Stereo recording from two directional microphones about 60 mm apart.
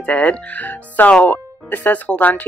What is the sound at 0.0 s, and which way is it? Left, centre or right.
Speech, left.